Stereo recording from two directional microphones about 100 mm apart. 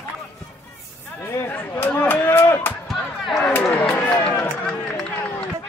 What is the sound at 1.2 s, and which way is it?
Chatter, 25° left (ahead or behind).